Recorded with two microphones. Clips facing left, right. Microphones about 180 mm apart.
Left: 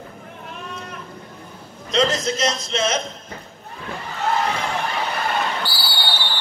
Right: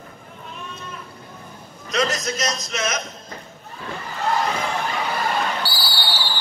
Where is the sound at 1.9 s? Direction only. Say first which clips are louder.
Left 3 dB; 30° left (ahead or behind).